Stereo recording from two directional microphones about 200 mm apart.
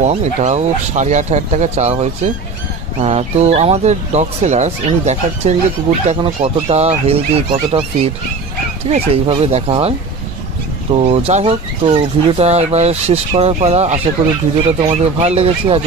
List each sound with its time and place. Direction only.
0.0 s speech: 35° right (ahead or behind)